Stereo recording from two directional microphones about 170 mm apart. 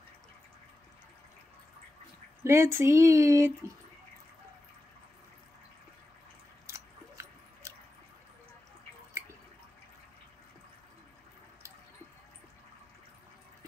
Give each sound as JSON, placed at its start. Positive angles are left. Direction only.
{"t": 2.4, "sound": "speech", "side_deg": -15}
{"t": 6.7, "sound": "biting", "side_deg": -15}